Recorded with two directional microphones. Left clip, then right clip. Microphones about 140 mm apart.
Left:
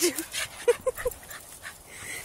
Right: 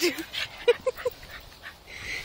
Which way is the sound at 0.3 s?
15° left (ahead or behind).